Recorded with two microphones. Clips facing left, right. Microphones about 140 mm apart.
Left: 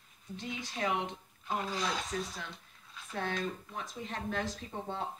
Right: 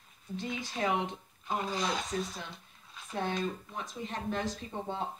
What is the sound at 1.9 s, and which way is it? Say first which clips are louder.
Speech: right 2 dB; 15° right (ahead or behind).